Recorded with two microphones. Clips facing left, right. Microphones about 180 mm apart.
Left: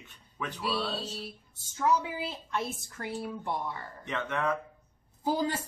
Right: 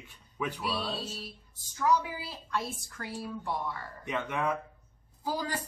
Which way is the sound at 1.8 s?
25° left (ahead or behind).